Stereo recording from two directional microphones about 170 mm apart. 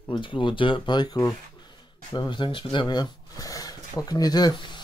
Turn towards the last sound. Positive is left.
turn(degrees=25)  # may be behind; listen again after turning